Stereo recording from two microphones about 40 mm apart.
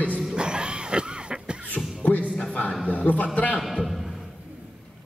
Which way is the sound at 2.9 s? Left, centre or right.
Left.